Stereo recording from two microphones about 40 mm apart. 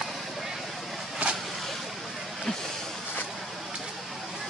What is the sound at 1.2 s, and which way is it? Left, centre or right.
Vehicle, right.